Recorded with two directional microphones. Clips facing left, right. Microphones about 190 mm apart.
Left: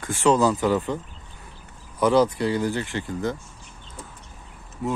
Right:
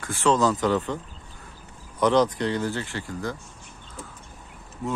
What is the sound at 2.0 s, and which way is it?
Speech, 10° left (ahead or behind).